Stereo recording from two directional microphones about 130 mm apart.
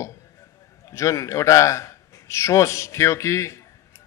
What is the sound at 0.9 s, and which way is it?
A man's voice, 20° left (ahead or behind).